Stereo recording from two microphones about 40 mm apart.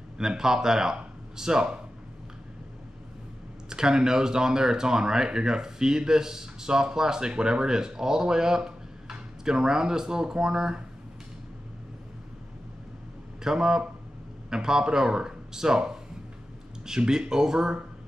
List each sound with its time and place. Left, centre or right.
0.2 s speech: centre
3.7 s speech: centre
13.4 s speech: centre